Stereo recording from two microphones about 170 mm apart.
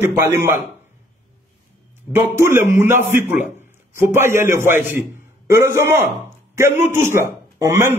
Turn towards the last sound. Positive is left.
turn(degrees=-20)  # may be behind; listen again after turning